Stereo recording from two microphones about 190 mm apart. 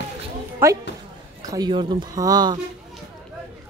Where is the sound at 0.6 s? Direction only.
10° right (ahead or behind).